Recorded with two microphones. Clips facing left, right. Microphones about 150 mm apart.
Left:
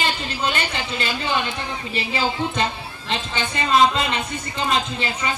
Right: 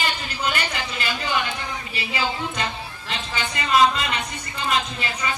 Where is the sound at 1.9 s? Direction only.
30° left (ahead or behind).